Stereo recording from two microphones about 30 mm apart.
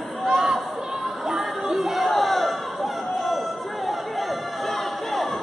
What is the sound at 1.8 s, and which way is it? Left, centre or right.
Chatter, centre.